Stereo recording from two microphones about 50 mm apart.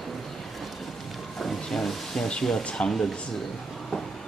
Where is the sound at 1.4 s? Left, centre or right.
Centre.